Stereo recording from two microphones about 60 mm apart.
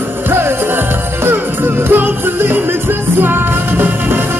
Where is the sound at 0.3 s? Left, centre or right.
Right.